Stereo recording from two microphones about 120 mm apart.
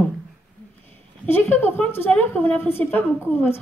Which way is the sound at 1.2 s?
15° left (ahead or behind).